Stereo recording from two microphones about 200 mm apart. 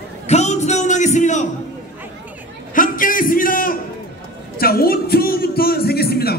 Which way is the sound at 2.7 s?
45° left (ahead or behind).